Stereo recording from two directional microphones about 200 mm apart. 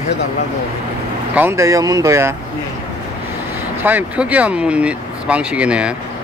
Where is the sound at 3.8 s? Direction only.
5° right (ahead or behind).